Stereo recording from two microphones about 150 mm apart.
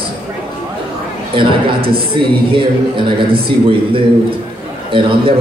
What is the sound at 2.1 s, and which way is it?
A man's voice, 35° right (ahead or behind).